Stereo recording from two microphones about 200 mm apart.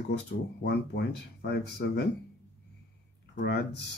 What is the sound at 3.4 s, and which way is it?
Speech, 60° left (ahead or behind).